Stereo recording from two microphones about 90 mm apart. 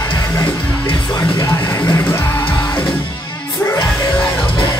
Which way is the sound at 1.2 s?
45° left (ahead or behind).